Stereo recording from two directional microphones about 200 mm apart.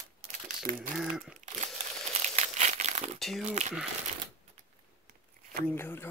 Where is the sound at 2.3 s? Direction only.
35° right (ahead or behind).